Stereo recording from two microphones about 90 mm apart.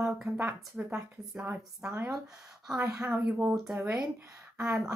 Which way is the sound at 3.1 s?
20° right (ahead or behind).